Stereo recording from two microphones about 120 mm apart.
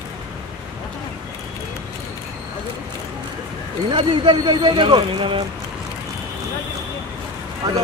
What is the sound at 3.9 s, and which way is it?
Speech, 45° right (ahead or behind).